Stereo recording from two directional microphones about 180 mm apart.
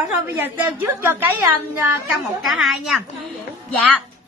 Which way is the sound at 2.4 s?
Centre (ahead or behind).